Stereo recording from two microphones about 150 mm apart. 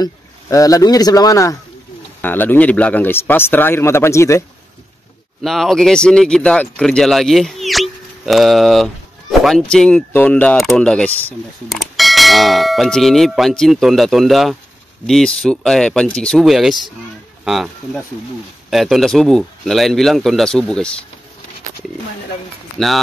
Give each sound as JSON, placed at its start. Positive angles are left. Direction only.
{"t": 0.0, "sound": "speech", "side_deg": 25}
{"t": 5.4, "sound": "speech", "side_deg": 0}
{"t": 11.7, "sound": "speech", "side_deg": 0}